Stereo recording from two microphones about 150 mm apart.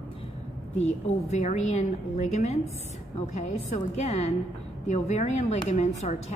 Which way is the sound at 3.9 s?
50° left (ahead or behind).